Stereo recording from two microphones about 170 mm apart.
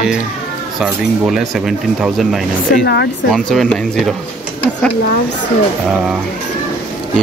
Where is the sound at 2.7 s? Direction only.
80° left.